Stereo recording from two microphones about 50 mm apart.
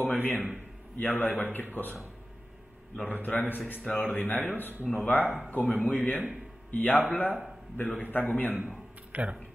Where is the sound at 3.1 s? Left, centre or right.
Left.